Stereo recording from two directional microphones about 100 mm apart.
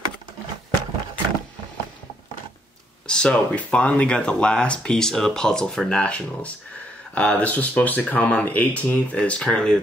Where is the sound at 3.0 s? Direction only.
10° left (ahead or behind).